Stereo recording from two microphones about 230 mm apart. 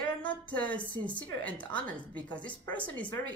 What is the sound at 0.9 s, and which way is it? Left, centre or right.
A woman's voice, centre.